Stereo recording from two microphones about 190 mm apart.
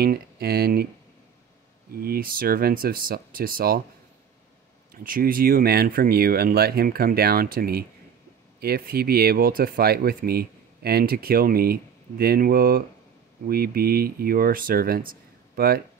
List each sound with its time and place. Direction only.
0.0 s speech: 55° right (ahead or behind)
1.9 s speech: 50° right (ahead or behind)
5.0 s speech: 50° right (ahead or behind)